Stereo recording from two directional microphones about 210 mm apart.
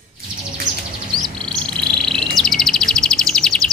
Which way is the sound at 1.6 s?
5° left (ahead or behind).